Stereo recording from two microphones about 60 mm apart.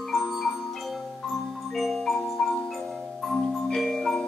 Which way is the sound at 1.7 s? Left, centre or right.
Centre.